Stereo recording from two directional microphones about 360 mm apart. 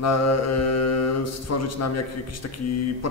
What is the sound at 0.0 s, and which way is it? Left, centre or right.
Mantra, left.